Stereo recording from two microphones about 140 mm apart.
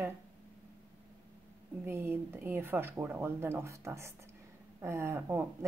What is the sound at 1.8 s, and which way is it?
A woman's voice, 15° right (ahead or behind).